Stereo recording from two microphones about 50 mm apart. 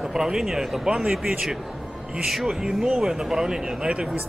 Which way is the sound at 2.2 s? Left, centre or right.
Centre.